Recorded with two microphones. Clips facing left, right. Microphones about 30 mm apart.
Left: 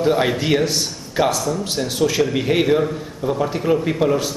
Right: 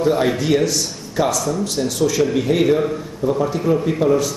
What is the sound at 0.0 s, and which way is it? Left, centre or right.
A man's voice, left.